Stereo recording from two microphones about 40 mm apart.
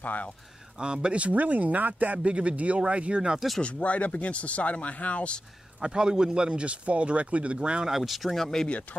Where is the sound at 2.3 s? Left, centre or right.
Right.